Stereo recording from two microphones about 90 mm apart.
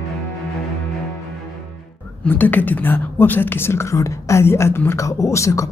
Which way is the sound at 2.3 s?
20° left (ahead or behind).